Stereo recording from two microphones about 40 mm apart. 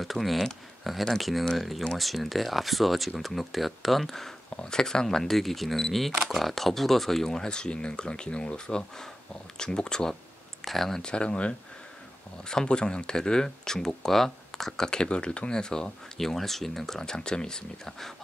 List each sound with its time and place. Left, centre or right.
0.0 s speech: centre
4.6 s speech: centre
10.6 s speech: centre
11.0 s speech: left; by 14.9 s centre
14.9 s speech: left
16.2 s speech: centre